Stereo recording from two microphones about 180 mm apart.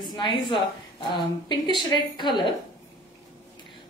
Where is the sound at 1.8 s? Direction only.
25° left (ahead or behind).